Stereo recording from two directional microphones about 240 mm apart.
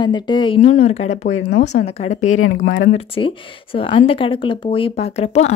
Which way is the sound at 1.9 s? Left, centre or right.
Left.